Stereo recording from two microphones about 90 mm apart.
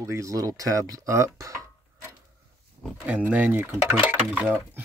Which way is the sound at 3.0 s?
20° right (ahead or behind).